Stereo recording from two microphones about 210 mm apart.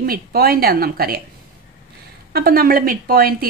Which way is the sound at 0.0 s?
45° right (ahead or behind).